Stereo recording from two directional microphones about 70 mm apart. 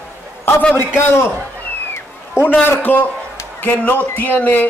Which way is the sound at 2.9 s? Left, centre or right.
Left.